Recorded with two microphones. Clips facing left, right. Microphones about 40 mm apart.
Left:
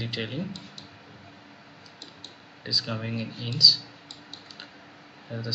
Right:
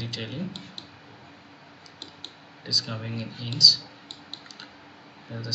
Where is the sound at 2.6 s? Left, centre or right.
Centre.